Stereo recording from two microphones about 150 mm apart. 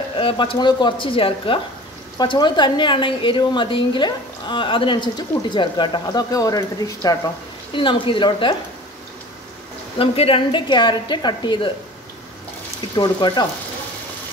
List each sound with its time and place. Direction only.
0.2 s a woman's voice: 35° left (ahead or behind)
7.7 s a woman's voice: 35° left (ahead or behind)
9.9 s a woman's voice: 40° left (ahead or behind)
12.9 s speech: 30° left (ahead or behind)